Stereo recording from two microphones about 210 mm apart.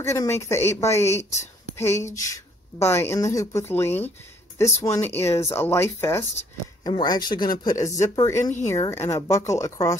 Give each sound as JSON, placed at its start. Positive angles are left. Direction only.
{"t": 0.0, "sound": "a woman's voice", "side_deg": 15}